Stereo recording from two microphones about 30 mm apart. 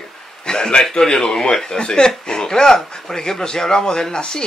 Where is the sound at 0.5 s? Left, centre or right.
Left.